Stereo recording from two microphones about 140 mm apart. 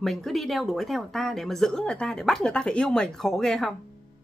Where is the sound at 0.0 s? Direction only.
Centre (ahead or behind).